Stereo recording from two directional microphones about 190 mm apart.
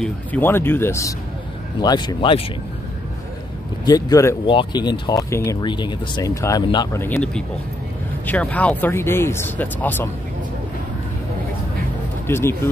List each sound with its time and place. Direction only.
0.0 s speech: 10° left (ahead or behind); by 2.4 s 25° left (ahead or behind)
3.8 s speech: 20° left (ahead or behind)
12.3 s speech: 15° left (ahead or behind)